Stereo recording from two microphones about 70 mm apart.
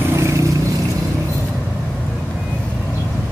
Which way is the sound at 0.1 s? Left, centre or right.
Right.